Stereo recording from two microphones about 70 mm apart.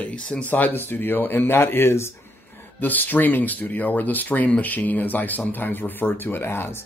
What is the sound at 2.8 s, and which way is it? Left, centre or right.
Speech, left.